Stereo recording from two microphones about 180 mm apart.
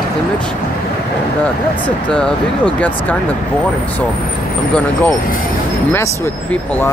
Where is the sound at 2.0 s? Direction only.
5° left (ahead or behind).